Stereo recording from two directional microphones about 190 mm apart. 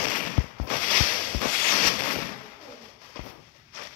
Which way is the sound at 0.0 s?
45° left (ahead or behind).